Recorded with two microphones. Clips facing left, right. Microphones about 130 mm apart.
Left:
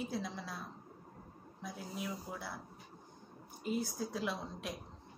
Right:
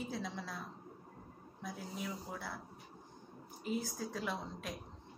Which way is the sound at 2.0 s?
5° left (ahead or behind).